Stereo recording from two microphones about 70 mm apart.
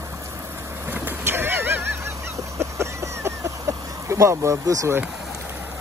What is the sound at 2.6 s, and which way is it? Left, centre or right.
Vehicle, right.